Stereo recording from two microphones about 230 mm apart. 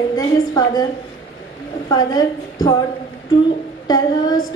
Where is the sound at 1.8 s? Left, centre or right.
Centre.